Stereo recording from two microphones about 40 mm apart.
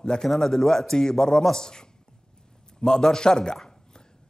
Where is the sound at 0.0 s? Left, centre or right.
Centre.